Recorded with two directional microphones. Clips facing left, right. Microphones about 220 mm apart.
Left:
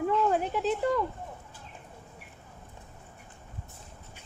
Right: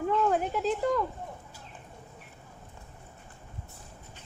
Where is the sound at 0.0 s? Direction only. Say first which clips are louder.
Even; centre (ahead or behind).